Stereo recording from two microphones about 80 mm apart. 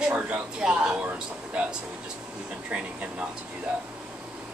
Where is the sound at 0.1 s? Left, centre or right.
Centre.